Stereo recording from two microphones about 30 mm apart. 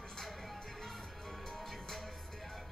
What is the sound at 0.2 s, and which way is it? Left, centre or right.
Music, centre.